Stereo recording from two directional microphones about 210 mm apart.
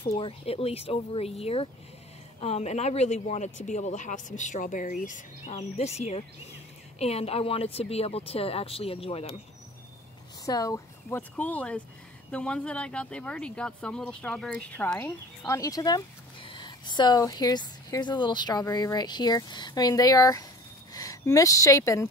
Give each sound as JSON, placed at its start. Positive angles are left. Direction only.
{"t": 0.0, "sound": "speech", "side_deg": 25}
{"t": 10.4, "sound": "speech", "side_deg": 15}